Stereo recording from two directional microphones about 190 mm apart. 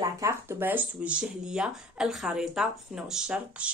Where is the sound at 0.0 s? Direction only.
15° right (ahead or behind).